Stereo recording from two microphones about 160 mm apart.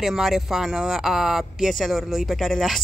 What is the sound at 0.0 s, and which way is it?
Speech, centre (ahead or behind).